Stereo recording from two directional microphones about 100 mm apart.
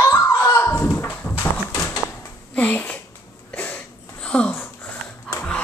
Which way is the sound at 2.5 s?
15° left (ahead or behind).